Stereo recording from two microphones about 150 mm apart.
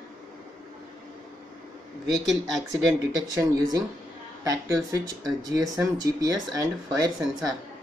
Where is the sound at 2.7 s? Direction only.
25° right (ahead or behind).